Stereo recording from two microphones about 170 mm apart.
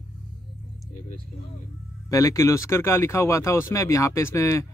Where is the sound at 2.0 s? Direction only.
20° left (ahead or behind).